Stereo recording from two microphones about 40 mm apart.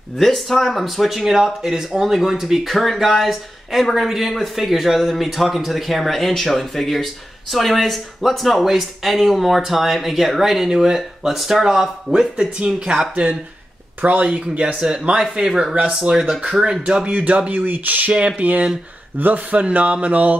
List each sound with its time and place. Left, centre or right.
0.2 s speech: centre; by 14.9 s right
14.9 s speech: centre
15.7 s speech: right
17.0 s speech: right
17.5 s speech: right
18.1 s speech: right
19.1 s speech: right
19.5 s speech: right